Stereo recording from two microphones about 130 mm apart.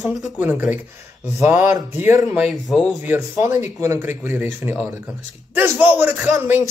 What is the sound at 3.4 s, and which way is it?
Speech, 15° right (ahead or behind).